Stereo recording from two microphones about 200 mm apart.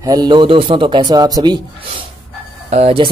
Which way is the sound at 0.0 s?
20° right (ahead or behind).